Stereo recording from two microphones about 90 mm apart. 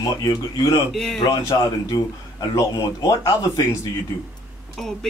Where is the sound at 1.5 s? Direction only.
45° left (ahead or behind).